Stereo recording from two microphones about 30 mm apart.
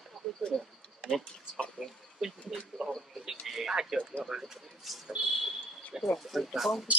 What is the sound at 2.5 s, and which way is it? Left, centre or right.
Speech, centre.